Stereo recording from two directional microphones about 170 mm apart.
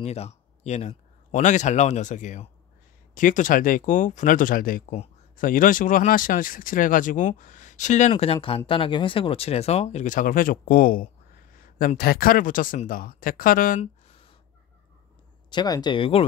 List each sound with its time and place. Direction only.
0.0 s speech: 40° left (ahead or behind)
8.1 s speech: 35° left (ahead or behind); by 13.7 s 55° left (ahead or behind)
15.5 s speech: 25° left (ahead or behind)